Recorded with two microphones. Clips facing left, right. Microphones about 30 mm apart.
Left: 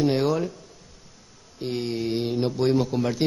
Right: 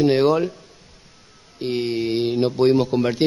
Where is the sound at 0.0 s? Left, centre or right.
Right.